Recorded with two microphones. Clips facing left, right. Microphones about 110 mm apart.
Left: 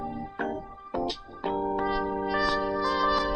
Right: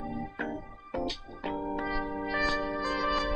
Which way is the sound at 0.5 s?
15° left (ahead or behind).